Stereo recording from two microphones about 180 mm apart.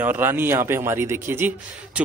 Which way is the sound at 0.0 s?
10° right (ahead or behind).